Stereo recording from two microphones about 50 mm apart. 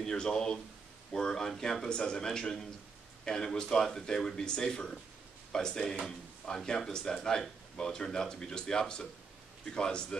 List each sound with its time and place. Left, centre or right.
0.0 s speech: centre